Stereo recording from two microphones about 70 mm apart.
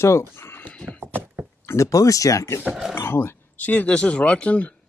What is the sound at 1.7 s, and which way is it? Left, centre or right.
Speech, left.